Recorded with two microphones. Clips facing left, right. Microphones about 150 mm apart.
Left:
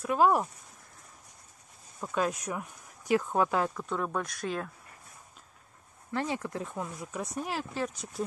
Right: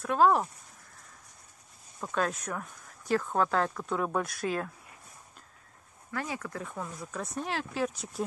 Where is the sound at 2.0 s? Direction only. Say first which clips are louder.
Left 1 dB; 5° left (ahead or behind).